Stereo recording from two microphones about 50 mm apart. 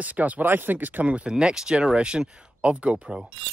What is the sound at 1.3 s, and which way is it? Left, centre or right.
Speech, centre.